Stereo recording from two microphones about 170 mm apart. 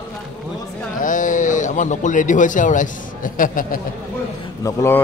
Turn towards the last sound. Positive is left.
turn(degrees=15)  # may be behind; listen again after turning